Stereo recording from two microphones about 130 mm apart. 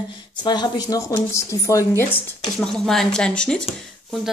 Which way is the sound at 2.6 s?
5° left (ahead or behind).